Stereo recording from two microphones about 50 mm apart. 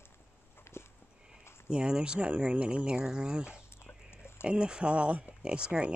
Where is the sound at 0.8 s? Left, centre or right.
Left.